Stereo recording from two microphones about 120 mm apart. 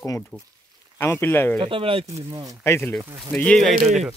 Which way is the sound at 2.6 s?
20° left (ahead or behind).